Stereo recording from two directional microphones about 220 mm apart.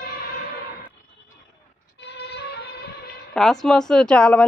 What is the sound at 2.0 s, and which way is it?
Music, 50° left (ahead or behind).